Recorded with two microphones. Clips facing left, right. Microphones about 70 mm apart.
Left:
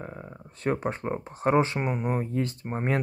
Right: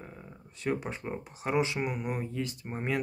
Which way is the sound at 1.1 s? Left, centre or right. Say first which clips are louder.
Left 6 dB; left.